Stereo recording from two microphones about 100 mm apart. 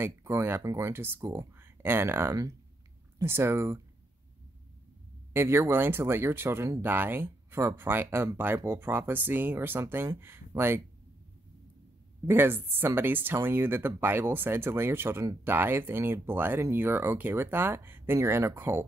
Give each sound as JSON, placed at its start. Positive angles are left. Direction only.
{"t": 0.0, "sound": "speech", "side_deg": -25}
{"t": 5.3, "sound": "speech", "side_deg": -25}
{"t": 12.3, "sound": "speech", "side_deg": -20}